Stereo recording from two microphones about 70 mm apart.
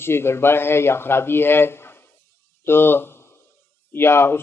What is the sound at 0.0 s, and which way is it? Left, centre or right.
A woman's voice, left.